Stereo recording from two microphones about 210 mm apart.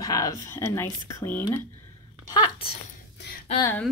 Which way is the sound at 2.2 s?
20° left (ahead or behind).